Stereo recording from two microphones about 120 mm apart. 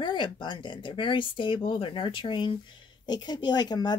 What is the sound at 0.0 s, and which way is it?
A woman's voice, 40° left (ahead or behind).